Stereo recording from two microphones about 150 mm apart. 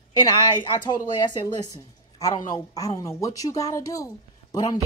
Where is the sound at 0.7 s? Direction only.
30° left (ahead or behind).